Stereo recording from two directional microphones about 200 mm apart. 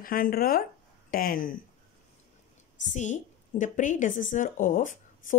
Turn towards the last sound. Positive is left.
turn(degrees=40)  # may be behind; listen again after turning